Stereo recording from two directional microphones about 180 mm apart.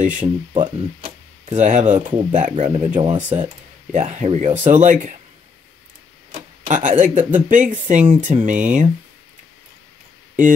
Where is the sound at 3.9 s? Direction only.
40° right (ahead or behind).